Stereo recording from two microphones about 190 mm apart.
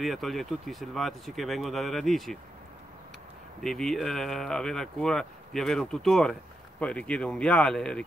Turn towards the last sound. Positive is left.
turn(degrees=5)  # may be behind; listen again after turning